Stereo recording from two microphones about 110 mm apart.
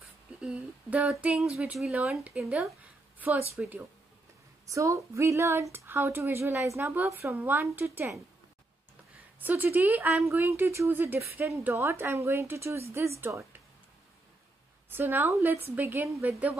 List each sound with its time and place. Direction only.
0.4 s humming: 10° right (ahead or behind)
1.2 s a sound: 5° right (ahead or behind)
2.2 s humming: 10° right (ahead or behind)
3.2 s speech: 15° right (ahead or behind)
4.6 s speech: 30° right (ahead or behind)
9.4 s humming: 20° right (ahead or behind)
10.2 s speech: 20° right (ahead or behind)
14.9 s speech: 20° right (ahead or behind)